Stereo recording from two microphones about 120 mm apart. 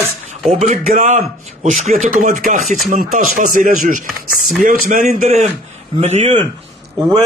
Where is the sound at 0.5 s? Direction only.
90° right.